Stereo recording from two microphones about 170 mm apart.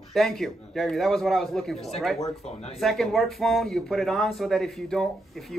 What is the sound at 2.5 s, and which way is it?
Speech, 40° left (ahead or behind).